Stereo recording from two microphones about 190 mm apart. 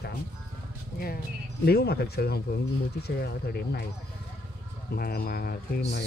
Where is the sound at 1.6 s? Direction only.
55° left (ahead or behind).